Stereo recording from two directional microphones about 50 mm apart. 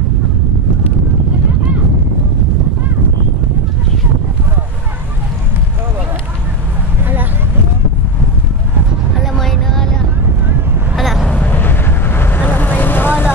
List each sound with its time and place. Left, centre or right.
9.2 s vehicle: centre
11.0 s vehicle: centre
11.4 s vehicle: left